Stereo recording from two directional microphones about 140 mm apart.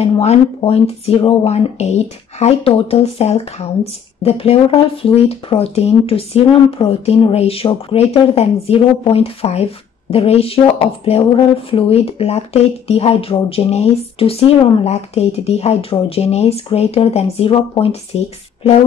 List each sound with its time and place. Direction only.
0.0 s speech: 50° left (ahead or behind)